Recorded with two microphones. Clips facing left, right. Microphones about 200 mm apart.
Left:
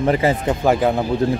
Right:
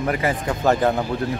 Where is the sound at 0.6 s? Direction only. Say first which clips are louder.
Left 1 dB; 10° left (ahead or behind).